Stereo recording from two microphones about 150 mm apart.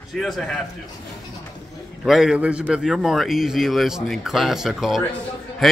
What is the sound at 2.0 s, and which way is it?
A man's voice, centre (ahead or behind).